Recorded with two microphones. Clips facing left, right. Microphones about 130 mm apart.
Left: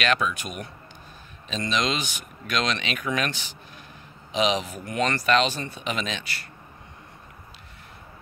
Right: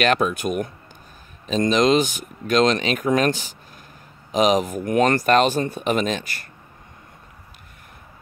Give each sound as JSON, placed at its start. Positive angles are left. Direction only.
{"t": 0.0, "sound": "speech", "side_deg": -45}